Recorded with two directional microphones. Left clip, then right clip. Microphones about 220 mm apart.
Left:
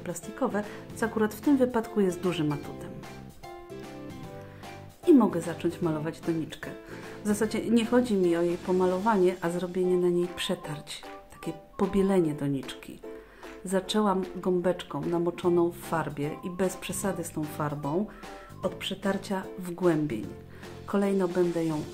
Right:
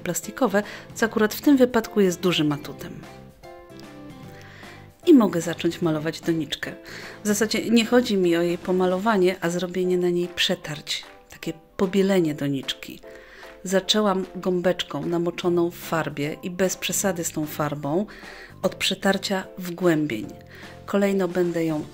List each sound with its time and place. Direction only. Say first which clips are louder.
0.0 s a woman's voice: right 7 dB; 25° right (ahead or behind)
5.0 s a woman's voice: right 5 dB; 20° right (ahead or behind)